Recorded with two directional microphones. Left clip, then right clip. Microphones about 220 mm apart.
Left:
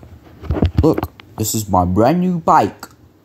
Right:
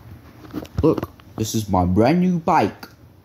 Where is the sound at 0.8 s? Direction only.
35° left (ahead or behind).